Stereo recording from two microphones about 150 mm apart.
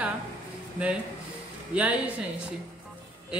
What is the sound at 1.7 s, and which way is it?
Speech, 10° right (ahead or behind).